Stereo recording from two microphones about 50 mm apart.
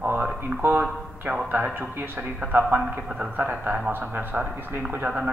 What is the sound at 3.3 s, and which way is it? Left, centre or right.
A woman's voice, right.